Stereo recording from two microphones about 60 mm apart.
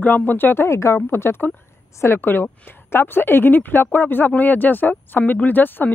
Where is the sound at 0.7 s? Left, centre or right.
Left.